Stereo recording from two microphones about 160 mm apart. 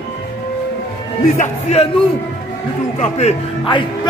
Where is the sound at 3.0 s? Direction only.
35° left (ahead or behind).